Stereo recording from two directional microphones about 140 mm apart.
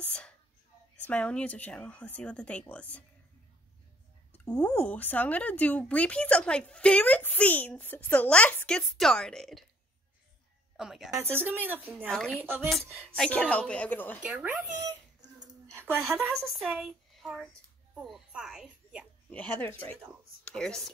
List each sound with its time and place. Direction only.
1.0 s speech: 10° left (ahead or behind)
4.3 s speech: 5° left (ahead or behind)
10.8 s a woman's voice: 5° right (ahead or behind)
11.1 s a woman's voice: 15° right (ahead or behind)
13.1 s speech: 10° left (ahead or behind)
14.2 s a woman's voice: 10° right (ahead or behind)
14.8 s whimper: 30° right (ahead or behind)
16.0 s a woman's voice: centre (ahead or behind)
19.3 s speech: 10° left (ahead or behind)